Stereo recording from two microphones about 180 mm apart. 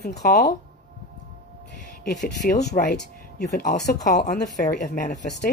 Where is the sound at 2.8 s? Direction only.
45° left (ahead or behind).